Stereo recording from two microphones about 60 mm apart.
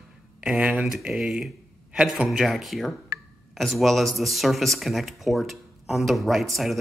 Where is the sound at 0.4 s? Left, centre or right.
Centre.